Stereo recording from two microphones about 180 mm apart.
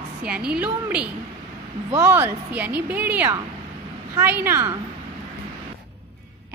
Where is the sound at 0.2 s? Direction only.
5° right (ahead or behind).